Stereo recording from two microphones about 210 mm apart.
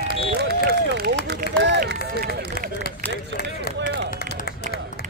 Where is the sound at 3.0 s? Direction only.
10° left (ahead or behind).